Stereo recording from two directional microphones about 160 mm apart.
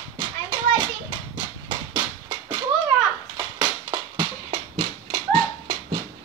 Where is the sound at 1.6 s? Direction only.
30° right (ahead or behind).